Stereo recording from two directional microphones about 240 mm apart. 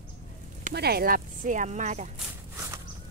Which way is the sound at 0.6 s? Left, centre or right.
Right.